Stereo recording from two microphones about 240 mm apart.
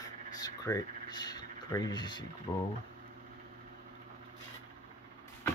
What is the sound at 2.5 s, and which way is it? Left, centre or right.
Speech, centre.